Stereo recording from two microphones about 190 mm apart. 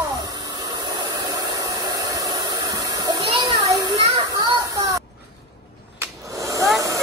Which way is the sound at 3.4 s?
20° right (ahead or behind).